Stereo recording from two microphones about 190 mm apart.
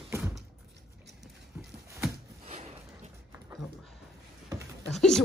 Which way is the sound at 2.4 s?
35° right (ahead or behind).